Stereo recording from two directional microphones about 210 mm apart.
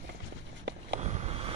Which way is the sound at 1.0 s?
30° right (ahead or behind).